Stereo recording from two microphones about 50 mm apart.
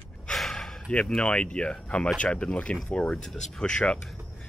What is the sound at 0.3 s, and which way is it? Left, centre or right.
Gasp, centre.